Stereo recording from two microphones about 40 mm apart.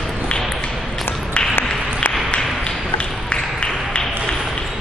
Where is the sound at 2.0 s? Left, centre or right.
Left.